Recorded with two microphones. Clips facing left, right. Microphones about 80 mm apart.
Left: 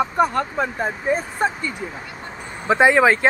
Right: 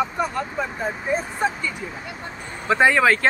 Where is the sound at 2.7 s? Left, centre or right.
Centre.